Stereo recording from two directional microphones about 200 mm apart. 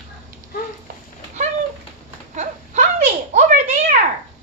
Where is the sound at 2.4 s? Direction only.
35° right (ahead or behind).